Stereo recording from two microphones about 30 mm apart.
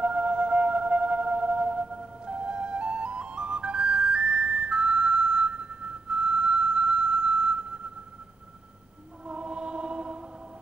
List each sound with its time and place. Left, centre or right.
0.0 s music: right
2.2 s flute: right
9.3 s choir: right